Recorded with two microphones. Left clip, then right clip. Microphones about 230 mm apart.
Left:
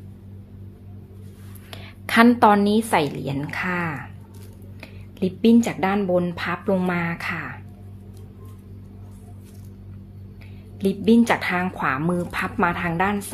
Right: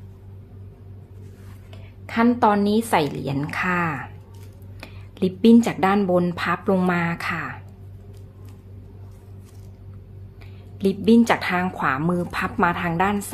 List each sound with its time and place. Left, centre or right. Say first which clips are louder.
1.7 s speech: left 9 dB; left; by 7.5 s centre
10.8 s speech: right 1 dB; centre